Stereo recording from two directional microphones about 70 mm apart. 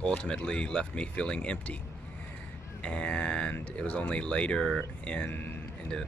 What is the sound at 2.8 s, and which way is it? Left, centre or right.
Speech, centre.